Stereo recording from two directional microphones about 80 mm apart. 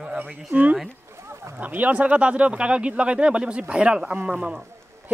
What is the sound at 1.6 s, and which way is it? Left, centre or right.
Speech, right.